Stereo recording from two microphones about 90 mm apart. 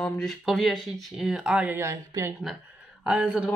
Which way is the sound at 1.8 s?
30° right (ahead or behind).